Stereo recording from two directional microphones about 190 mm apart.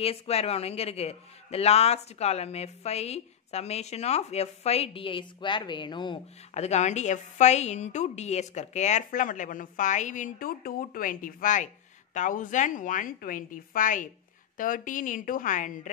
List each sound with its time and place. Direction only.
0.0 s a man's voice: 30° left (ahead or behind)